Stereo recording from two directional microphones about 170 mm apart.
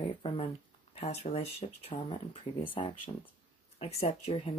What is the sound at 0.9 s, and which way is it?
Speech, 40° left (ahead or behind).